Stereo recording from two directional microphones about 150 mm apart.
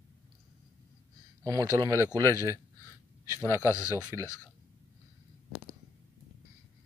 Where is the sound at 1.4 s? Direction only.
25° right (ahead or behind).